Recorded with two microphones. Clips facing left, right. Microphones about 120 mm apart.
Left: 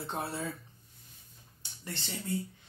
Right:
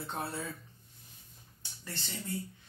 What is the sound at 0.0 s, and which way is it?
Speech, 20° left (ahead or behind).